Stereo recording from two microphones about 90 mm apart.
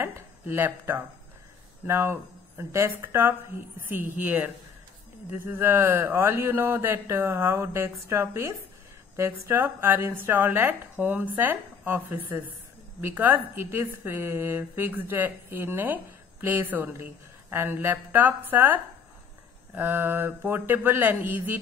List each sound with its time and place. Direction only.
0.0 s speech: 25° right (ahead or behind)